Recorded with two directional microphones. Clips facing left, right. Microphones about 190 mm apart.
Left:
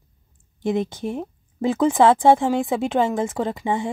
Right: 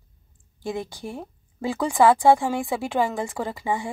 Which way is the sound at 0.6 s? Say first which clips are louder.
Left 7 dB; 20° left (ahead or behind).